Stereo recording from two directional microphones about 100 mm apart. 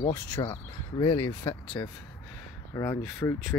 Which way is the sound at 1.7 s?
40° left (ahead or behind).